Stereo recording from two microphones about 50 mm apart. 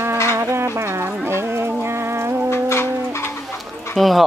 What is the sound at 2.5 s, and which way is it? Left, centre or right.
Livestock, left.